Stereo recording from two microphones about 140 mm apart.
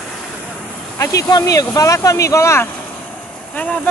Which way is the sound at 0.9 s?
20° left (ahead or behind).